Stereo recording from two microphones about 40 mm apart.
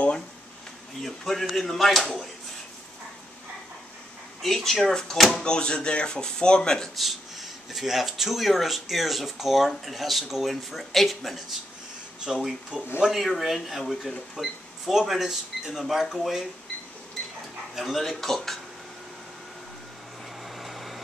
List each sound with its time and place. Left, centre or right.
1.0 s speech: centre
4.4 s speech: centre
7.7 s speech: centre
17.7 s speech: centre
20.4 s vehicle: centre